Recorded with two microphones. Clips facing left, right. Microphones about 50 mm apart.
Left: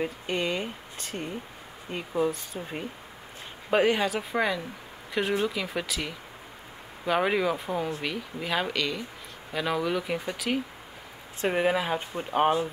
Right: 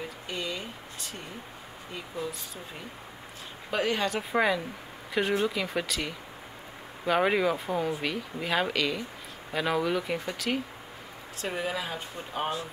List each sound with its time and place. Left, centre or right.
0.0 s speech: left
2.2 s speech: left
3.7 s speech: centre
4.1 s speech: centre
11.4 s speech: left